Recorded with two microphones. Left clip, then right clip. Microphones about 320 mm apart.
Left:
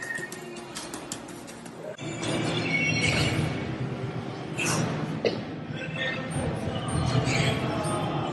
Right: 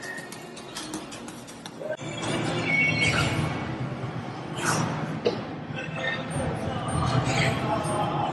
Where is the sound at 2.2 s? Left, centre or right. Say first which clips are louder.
Left 1 dB; centre.